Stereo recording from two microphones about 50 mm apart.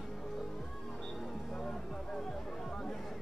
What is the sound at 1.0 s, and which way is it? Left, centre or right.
Music, centre.